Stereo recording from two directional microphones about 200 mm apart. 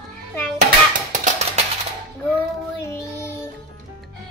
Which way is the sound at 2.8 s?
15° left (ahead or behind).